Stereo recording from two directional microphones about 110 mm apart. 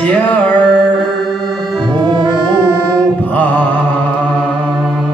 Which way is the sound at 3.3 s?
15° left (ahead or behind).